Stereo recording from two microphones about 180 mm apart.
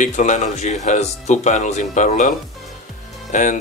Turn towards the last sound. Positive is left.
turn(degrees=45)  # may be behind; listen again after turning